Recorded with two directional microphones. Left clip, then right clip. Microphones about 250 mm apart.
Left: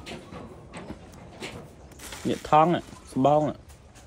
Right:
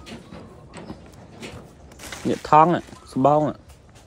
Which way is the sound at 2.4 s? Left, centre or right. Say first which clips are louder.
Right 5 dB; centre.